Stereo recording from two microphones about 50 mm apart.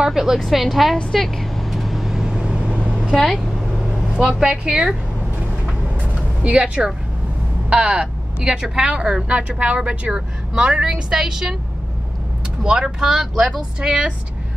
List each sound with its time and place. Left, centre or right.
0.0 s speech: centre
0.4 s a woman's voice: centre
1.1 s vehicle: centre
2.2 s vehicle: centre
6.1 s vehicle: right
7.7 s speech: centre
12.6 s speech: centre